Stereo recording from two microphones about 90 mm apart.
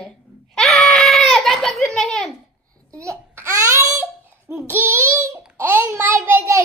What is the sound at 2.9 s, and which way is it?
A child's voice, 35° right (ahead or behind).